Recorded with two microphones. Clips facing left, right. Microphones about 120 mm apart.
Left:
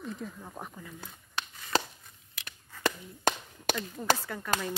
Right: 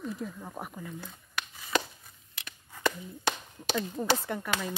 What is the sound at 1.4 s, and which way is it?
Chopping, 25° left (ahead or behind).